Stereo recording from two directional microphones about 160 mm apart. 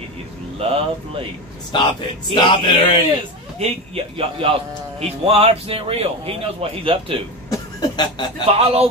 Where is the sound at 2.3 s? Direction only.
30° left (ahead or behind).